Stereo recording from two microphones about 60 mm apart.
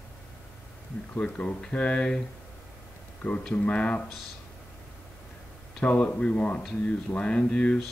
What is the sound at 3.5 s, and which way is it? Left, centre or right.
Speech, left.